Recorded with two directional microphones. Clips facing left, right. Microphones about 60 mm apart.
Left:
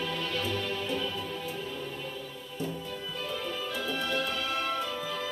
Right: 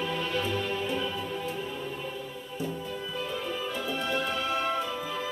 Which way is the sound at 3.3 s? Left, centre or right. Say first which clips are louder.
Even; right.